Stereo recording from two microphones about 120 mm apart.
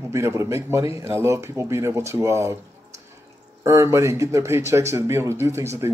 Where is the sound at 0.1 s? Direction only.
25° right (ahead or behind).